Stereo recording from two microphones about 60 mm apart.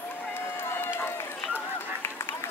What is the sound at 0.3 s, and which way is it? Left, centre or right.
Run, left.